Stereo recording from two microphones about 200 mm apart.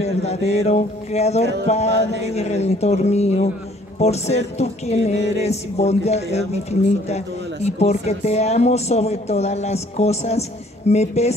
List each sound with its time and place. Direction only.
0.0 s music: 35° left (ahead or behind)